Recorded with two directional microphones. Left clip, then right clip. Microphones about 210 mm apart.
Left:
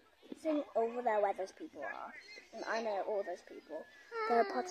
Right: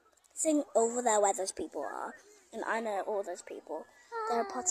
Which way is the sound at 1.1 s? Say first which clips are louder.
Right 5 dB; 40° right (ahead or behind).